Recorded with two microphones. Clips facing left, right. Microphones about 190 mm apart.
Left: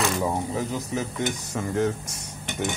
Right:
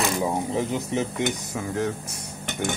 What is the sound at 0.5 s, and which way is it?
Speech, 25° right (ahead or behind).